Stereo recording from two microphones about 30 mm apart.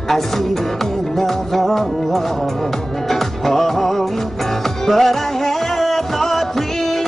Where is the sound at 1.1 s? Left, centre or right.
Centre.